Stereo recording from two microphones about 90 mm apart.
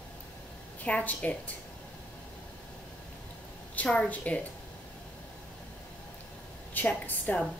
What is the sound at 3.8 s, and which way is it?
Speech, 15° left (ahead or behind).